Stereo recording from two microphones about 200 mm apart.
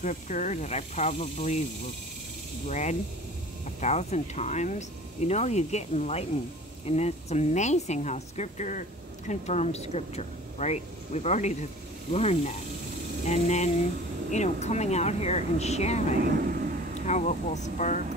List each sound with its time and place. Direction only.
0.0 s speech: 35° left (ahead or behind)
2.7 s speech: 35° left (ahead or behind)